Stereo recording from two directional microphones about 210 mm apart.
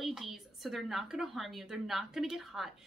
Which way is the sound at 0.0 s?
Centre (ahead or behind).